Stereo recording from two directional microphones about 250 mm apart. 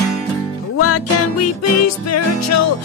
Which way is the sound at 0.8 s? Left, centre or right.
Left.